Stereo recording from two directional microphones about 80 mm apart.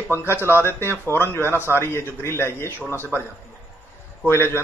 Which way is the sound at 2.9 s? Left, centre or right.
Right.